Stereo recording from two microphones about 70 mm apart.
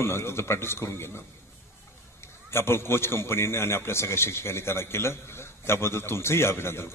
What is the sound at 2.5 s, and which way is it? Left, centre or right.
A man's voice, left.